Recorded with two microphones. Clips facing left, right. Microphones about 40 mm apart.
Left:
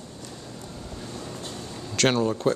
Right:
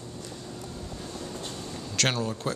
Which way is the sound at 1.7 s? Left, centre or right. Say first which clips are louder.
Left 5 dB; centre.